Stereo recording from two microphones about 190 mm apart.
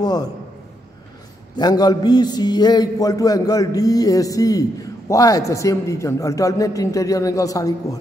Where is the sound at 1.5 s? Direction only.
20° left (ahead or behind).